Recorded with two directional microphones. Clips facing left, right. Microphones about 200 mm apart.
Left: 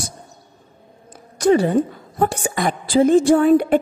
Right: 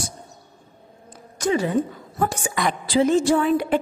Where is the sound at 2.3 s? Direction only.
35° left (ahead or behind).